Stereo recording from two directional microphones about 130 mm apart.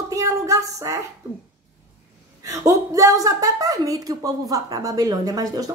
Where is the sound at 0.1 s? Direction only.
25° right (ahead or behind).